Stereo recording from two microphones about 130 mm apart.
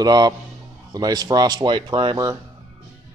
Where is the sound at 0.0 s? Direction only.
30° right (ahead or behind).